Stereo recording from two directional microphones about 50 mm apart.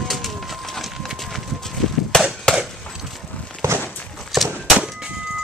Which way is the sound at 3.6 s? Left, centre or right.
Right.